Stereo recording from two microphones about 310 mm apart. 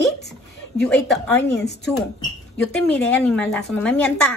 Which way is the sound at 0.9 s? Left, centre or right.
Centre.